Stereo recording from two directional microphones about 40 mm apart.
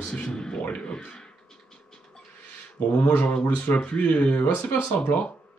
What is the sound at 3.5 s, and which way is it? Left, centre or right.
Speech, left.